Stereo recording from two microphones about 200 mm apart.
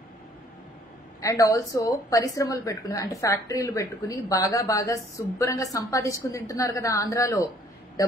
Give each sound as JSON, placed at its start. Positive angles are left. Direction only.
{"t": 1.2, "sound": "a woman's voice", "side_deg": 15}